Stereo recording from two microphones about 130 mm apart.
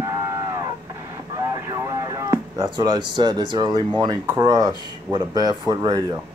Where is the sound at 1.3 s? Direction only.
25° right (ahead or behind).